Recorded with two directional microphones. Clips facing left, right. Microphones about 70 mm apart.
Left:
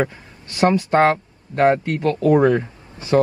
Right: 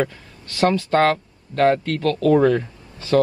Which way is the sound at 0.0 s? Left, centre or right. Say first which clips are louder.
Left 1 dB; left.